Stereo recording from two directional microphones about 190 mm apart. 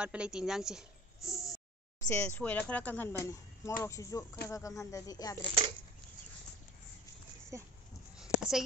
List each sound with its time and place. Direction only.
0.0 s speech: 5° right (ahead or behind)
2.0 s speech: 10° left (ahead or behind)
7.5 s speech: 15° right (ahead or behind)
8.2 s a sound: centre (ahead or behind)